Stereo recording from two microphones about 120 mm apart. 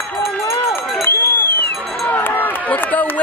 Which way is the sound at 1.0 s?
20° left (ahead or behind).